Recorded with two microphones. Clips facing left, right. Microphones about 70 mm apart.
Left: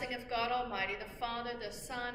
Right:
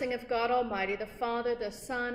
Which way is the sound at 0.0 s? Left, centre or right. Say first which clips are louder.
Right 6 dB; right.